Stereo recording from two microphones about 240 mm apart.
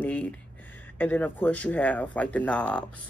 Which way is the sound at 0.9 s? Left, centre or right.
Centre.